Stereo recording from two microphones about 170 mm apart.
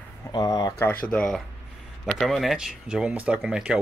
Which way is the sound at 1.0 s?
5° left (ahead or behind).